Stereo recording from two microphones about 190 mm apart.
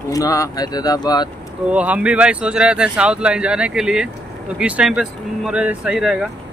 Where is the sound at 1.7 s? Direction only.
5° right (ahead or behind).